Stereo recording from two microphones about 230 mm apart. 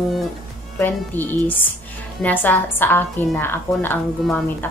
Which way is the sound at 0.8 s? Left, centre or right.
Centre.